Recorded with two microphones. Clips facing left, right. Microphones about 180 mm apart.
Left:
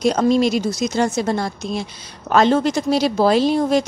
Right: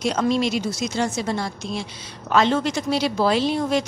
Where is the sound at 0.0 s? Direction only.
40° left (ahead or behind).